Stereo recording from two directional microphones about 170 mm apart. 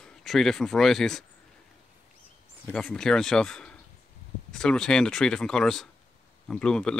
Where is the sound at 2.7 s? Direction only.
5° left (ahead or behind).